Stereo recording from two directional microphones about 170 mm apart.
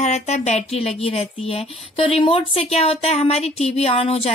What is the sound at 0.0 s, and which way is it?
A woman's voice, 40° left (ahead or behind).